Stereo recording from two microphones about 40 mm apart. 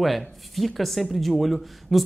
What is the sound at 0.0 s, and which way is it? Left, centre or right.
A man's voice, centre.